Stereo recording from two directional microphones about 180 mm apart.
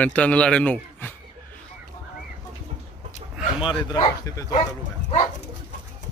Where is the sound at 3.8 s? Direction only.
20° left (ahead or behind).